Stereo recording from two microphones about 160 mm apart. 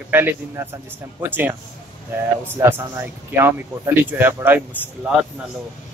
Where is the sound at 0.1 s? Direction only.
10° right (ahead or behind).